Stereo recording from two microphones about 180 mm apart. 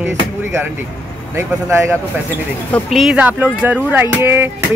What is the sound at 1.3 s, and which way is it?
Speech, 15° right (ahead or behind).